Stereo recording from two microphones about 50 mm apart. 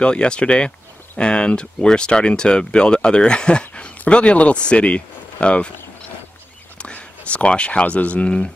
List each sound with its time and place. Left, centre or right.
0.0 s speech: centre
6.8 s speech: left